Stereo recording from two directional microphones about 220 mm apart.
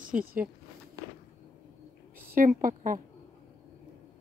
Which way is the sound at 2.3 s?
40° right (ahead or behind).